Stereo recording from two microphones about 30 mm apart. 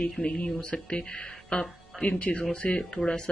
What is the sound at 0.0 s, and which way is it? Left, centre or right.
Speech, left.